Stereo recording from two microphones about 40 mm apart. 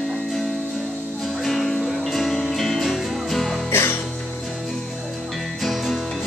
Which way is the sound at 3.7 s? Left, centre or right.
Left.